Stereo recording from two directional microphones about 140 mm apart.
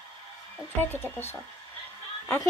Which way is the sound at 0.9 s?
15° left (ahead or behind).